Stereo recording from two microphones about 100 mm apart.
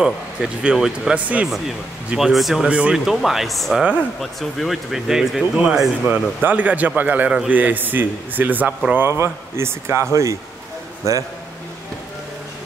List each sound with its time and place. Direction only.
0.0 s a man's voice: 5° right (ahead or behind)
6.0 s a man's voice: 15° right (ahead or behind)